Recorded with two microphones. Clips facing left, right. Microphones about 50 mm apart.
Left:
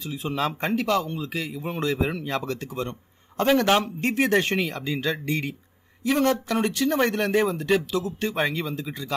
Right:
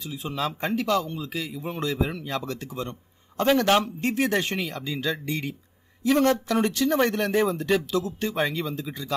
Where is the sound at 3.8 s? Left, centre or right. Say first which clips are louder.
Left 1 dB; left.